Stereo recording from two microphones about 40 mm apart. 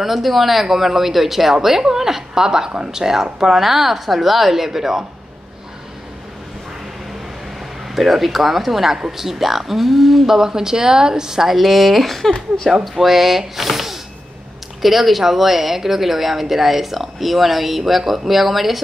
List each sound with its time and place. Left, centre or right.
0.0 s speech: centre
7.9 s speech: centre
12.4 s speech: centre
12.9 s speech: centre